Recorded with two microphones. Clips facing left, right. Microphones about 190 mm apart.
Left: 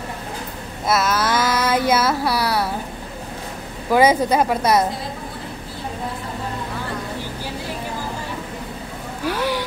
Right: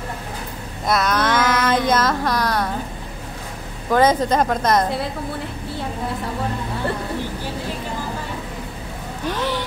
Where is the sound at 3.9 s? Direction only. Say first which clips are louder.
Left 1 dB; 10° left (ahead or behind).